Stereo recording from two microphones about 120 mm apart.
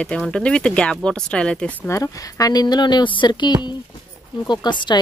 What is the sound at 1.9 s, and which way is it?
Speech, 30° left (ahead or behind).